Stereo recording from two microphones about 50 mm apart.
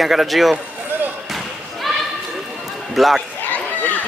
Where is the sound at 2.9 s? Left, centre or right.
Centre.